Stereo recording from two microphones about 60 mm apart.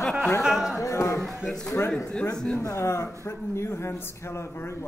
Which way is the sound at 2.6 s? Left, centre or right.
Left.